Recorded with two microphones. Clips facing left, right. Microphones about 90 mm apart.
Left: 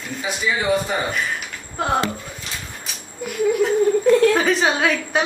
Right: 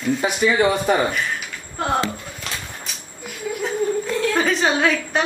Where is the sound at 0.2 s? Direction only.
60° right (ahead or behind).